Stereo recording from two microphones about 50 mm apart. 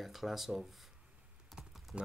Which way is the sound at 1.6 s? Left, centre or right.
Centre.